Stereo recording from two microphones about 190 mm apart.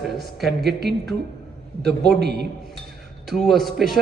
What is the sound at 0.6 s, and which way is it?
Speech, 60° right (ahead or behind).